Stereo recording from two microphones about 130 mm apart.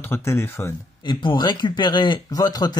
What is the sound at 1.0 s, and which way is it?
Speech, 35° left (ahead or behind).